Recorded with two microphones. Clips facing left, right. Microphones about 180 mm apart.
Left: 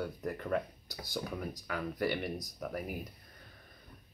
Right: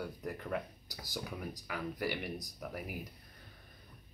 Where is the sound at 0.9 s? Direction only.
20° left (ahead or behind).